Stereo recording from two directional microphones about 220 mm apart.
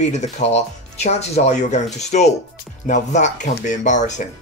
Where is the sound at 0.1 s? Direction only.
30° left (ahead or behind).